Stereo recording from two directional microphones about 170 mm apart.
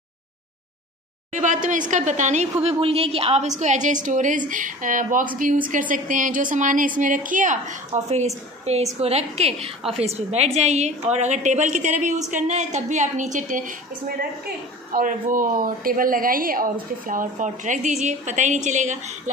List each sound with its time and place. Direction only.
1.3 s a woman's voice: 45° right (ahead or behind)
2.6 s a woman's voice: 35° right (ahead or behind)